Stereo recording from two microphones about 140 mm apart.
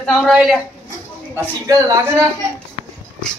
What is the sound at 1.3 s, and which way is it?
Speech, 20° right (ahead or behind).